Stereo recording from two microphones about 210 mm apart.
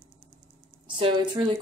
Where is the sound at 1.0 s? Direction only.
20° right (ahead or behind).